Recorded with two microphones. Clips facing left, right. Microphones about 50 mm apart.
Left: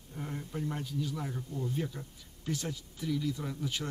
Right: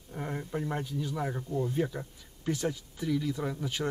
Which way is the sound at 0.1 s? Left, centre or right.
Right.